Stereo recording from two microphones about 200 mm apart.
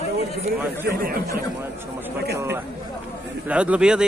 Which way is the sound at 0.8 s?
50° right (ahead or behind).